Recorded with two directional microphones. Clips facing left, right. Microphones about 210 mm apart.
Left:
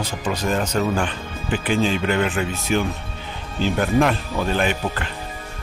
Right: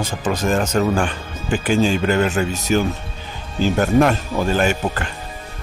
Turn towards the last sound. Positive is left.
turn(degrees=-45)  # may be behind; listen again after turning